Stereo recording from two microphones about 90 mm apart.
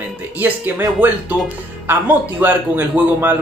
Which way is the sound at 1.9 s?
20° right (ahead or behind).